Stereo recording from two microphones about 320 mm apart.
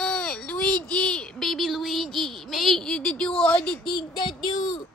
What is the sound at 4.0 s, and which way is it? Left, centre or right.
Speech, centre.